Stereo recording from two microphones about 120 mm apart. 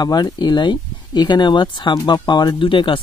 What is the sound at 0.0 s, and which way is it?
Speech, 35° left (ahead or behind).